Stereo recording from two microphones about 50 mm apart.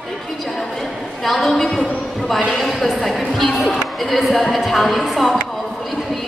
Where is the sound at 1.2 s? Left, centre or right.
Centre.